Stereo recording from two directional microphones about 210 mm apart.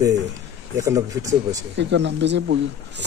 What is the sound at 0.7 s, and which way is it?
Speech, 15° right (ahead or behind).